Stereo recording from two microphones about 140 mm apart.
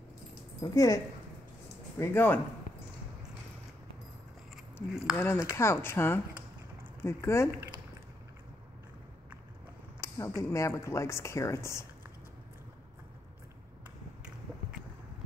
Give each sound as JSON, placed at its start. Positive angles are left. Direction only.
{"t": 0.6, "sound": "speech", "side_deg": 25}
{"t": 2.0, "sound": "speech", "side_deg": 15}
{"t": 5.1, "sound": "speech", "side_deg": 15}
{"t": 9.9, "sound": "speech", "side_deg": 20}